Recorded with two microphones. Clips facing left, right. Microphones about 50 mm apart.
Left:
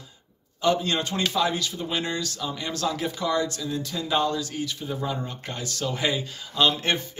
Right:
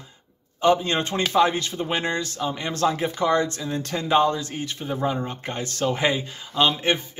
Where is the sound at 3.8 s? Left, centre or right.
Right.